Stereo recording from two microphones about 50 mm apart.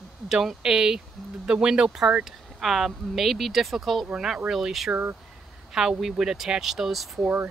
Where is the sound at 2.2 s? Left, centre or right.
Centre.